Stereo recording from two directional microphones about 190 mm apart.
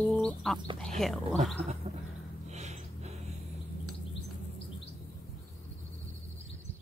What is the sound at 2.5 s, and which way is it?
Snort, 35° right (ahead or behind).